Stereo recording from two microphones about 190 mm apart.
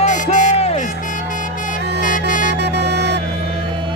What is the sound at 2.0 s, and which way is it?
Music, 45° left (ahead or behind).